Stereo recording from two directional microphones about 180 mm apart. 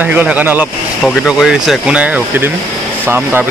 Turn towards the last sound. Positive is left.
turn(degrees=-10)  # may be behind; listen again after turning